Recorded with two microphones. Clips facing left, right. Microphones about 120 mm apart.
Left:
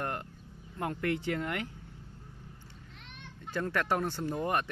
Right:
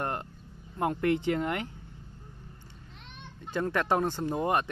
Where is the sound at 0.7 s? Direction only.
25° right (ahead or behind).